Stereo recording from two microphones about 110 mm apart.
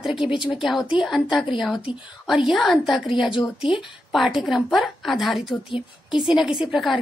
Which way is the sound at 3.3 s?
45° left (ahead or behind).